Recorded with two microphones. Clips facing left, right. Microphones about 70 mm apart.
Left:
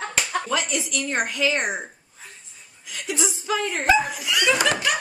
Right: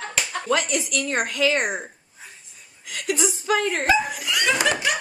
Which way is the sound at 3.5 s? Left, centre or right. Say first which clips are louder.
Right 2 dB; right.